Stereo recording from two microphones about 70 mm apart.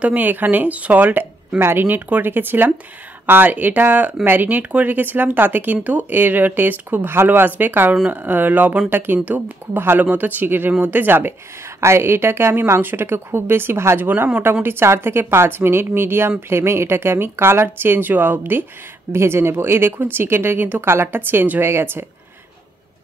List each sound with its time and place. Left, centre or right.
0.0 s speech: right
1.6 s a woman's voice: right